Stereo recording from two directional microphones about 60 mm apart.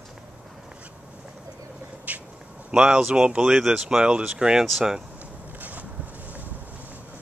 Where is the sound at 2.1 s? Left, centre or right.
Right.